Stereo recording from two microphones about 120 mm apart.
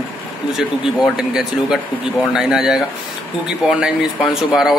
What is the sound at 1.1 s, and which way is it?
Speech, 5° right (ahead or behind).